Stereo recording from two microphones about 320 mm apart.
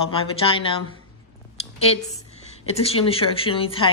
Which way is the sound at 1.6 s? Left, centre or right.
Centre.